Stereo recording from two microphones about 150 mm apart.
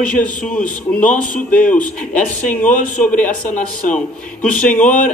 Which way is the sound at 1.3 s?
10° left (ahead or behind).